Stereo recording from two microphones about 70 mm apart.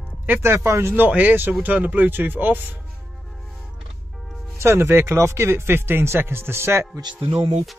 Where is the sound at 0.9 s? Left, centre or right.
Right.